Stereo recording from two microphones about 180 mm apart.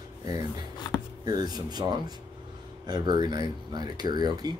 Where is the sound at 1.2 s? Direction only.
20° right (ahead or behind).